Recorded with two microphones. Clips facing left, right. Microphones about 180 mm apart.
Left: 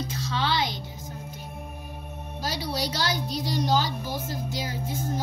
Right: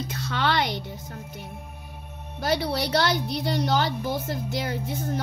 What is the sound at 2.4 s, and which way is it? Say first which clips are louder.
A woman's voice: right 5 dB; 60° right (ahead or behind).